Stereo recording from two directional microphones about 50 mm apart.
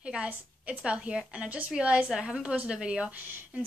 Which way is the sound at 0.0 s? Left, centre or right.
Right.